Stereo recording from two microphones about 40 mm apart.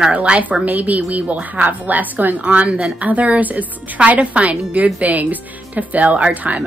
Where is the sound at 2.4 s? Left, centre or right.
Right.